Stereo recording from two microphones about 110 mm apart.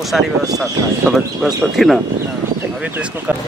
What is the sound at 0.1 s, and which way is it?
Speech, centre (ahead or behind).